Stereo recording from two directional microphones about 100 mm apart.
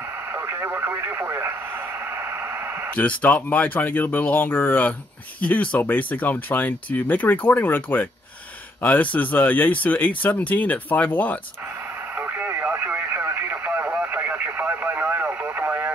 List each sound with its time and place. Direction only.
0.3 s radio: 25° right (ahead or behind)
3.0 s speech: 15° left (ahead or behind)
12.2 s radio: 20° right (ahead or behind)